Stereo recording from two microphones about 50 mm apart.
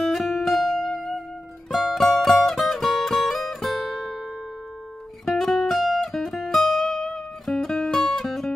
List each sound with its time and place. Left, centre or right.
0.1 s music: centre
5.2 s guitar: centre